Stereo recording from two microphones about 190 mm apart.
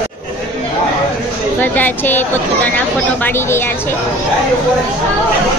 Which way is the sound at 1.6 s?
10° left (ahead or behind).